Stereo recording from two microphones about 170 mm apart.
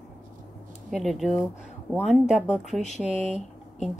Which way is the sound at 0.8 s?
Centre (ahead or behind).